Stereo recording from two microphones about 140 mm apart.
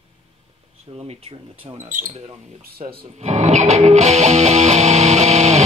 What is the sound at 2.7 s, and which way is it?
Music, 55° right (ahead or behind).